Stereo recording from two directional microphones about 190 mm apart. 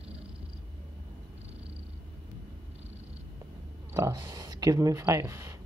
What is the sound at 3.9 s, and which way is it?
Speech, 20° right (ahead or behind).